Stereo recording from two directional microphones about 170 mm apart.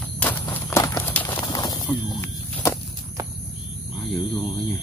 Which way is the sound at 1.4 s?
25° left (ahead or behind).